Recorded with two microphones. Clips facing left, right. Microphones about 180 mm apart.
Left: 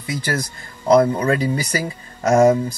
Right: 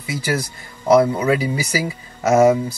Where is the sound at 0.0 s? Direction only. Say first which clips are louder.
Right 1 dB; 10° right (ahead or behind).